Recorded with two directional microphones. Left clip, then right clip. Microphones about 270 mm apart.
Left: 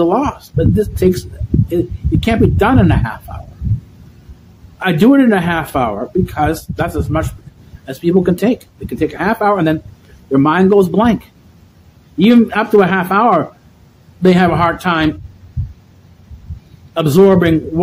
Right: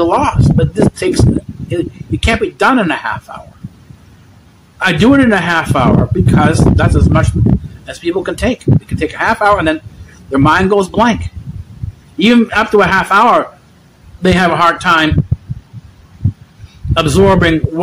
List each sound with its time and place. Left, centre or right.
0.0 s a man's voice: centre
4.7 s a man's voice: centre
12.2 s a man's voice: centre
16.9 s a man's voice: centre